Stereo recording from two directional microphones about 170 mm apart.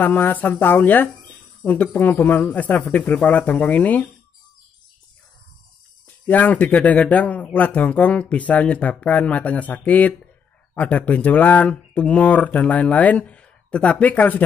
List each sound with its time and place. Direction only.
0.0 s speech: 10° left (ahead or behind)
6.2 s speech: 10° left (ahead or behind)